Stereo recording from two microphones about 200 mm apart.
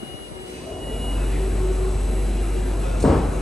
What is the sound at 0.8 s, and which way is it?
Vehicle, centre (ahead or behind).